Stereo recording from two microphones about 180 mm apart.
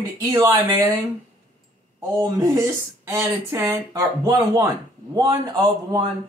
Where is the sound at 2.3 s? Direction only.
20° right (ahead or behind).